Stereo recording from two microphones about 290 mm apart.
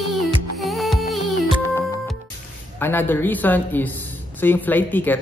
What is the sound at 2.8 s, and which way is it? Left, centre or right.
Speech, centre.